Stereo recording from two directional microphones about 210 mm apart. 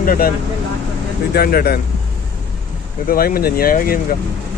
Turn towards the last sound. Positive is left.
turn(degrees=45)  # may be behind; listen again after turning